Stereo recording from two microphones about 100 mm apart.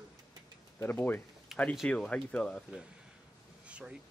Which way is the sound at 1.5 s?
5° right (ahead or behind).